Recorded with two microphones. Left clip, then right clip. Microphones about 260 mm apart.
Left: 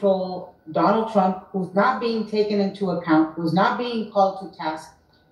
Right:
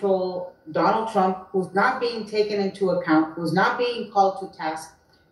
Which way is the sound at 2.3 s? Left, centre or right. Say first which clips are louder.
Even; right.